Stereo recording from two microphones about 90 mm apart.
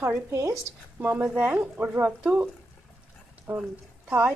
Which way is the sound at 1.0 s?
20° right (ahead or behind).